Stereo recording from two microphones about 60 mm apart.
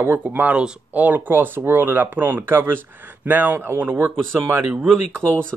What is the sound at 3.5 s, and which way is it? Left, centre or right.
Speech, right.